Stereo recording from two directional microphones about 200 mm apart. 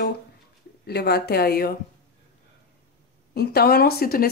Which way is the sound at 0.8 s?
55° left (ahead or behind).